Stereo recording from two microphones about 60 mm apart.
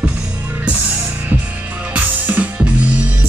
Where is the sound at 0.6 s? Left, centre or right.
Right.